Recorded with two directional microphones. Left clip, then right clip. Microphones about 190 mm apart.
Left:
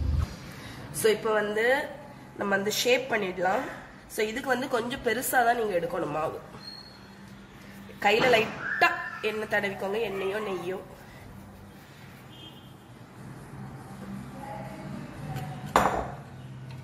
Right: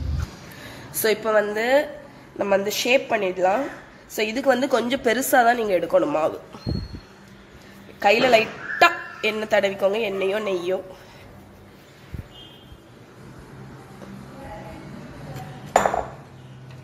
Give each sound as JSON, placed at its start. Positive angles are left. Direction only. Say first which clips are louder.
{"t": 1.0, "sound": "a woman's voice", "louder": "right 5 dB", "side_deg": -50}
{"t": 8.0, "sound": "a woman's voice", "louder": "right 5 dB", "side_deg": -35}